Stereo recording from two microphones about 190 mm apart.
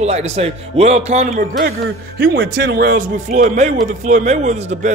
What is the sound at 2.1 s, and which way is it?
Speech, 65° right (ahead or behind).